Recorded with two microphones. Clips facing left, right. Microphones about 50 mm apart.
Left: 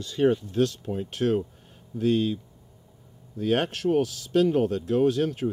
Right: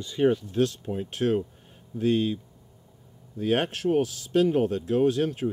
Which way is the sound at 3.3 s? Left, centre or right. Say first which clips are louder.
Even; right.